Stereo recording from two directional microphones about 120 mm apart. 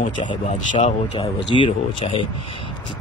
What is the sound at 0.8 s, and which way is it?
Speech, 50° left (ahead or behind).